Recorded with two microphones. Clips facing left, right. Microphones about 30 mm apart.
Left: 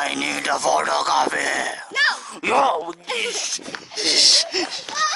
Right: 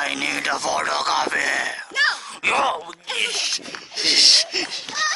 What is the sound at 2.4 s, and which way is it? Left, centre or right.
Speech, right.